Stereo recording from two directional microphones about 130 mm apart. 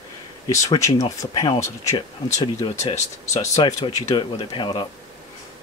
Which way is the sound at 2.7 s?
60° left (ahead or behind).